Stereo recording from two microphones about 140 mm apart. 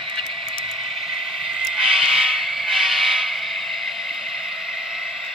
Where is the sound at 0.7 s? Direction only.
Centre (ahead or behind).